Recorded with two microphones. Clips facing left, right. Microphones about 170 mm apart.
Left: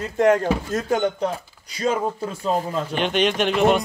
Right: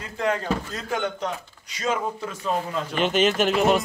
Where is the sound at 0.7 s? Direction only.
35° left (ahead or behind).